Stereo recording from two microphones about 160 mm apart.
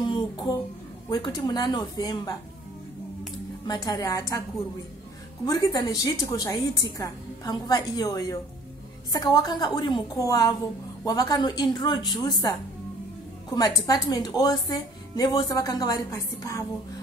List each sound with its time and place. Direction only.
0.0 s a sound: 25° left (ahead or behind)
1.1 s speech: 25° left (ahead or behind)
3.6 s speech: 25° left (ahead or behind)
5.5 s speech: 25° left (ahead or behind)
13.6 s speech: 25° left (ahead or behind)